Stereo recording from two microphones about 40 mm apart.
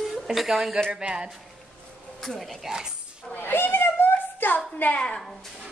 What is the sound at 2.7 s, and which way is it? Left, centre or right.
Speech, centre.